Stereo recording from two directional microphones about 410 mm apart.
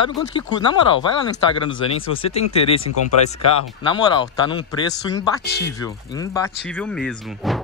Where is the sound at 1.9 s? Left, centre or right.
Centre.